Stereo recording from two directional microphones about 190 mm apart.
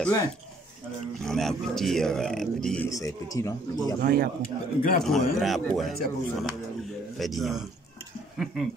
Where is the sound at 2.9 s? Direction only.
15° left (ahead or behind).